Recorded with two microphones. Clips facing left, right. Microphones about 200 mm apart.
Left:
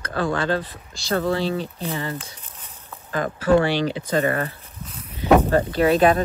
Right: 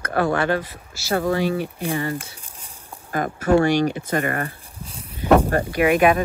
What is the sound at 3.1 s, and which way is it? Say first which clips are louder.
Speech: even; 45° right (ahead or behind).